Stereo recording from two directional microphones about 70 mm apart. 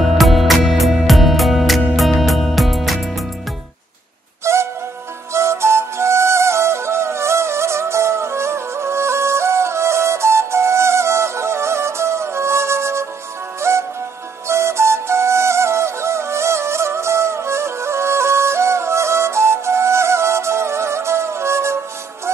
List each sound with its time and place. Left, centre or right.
0.0 s music: centre
4.5 s music: right